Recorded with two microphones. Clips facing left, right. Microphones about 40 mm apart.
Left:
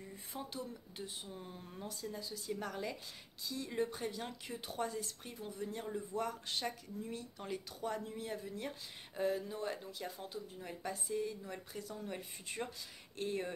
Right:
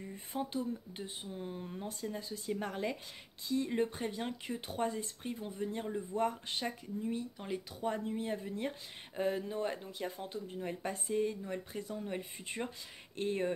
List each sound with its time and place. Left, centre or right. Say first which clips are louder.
0.1 s speech: right 9 dB; right
1.9 s speech: right 2 dB; right; by 7.6 s centre
7.8 s speech: right 6 dB; right
11.5 s speech: right 5 dB; right